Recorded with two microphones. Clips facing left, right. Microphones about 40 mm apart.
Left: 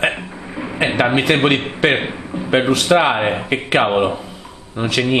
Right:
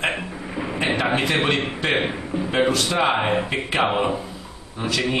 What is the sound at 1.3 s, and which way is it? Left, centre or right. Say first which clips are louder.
Speech: left 5 dB; left.